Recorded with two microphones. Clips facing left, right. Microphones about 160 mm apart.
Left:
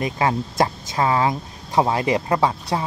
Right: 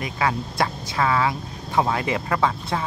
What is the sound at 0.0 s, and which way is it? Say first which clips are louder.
Speech: left 3 dB; 25° left (ahead or behind).